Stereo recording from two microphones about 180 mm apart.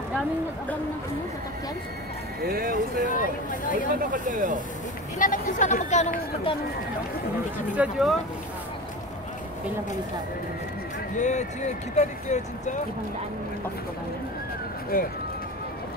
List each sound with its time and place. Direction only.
2.4 s speech: 55° right (ahead or behind)
3.1 s speech: 50° left (ahead or behind)
4.1 s speech: 45° right (ahead or behind)
5.2 s speech: 45° left (ahead or behind)
7.7 s speech: 5° right (ahead or behind)
11.1 s speech: 40° left (ahead or behind)
14.9 s speech: 55° left (ahead or behind)